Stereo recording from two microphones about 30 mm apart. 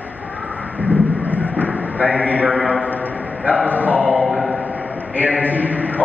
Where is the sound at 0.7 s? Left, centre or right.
Right.